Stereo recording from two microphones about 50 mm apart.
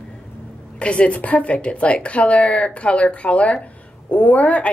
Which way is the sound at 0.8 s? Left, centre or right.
Left.